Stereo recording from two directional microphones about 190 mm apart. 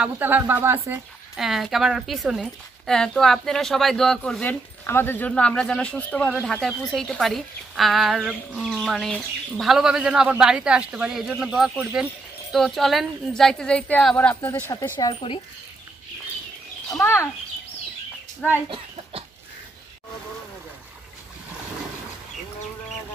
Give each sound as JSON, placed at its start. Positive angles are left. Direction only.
{"t": 0.0, "sound": "a woman's voice", "side_deg": -10}
{"t": 15.0, "sound": "speech", "side_deg": 25}
{"t": 16.9, "sound": "a child's voice", "side_deg": 10}